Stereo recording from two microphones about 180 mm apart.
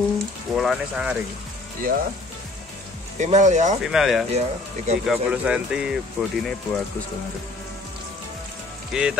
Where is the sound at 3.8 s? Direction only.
Centre (ahead or behind).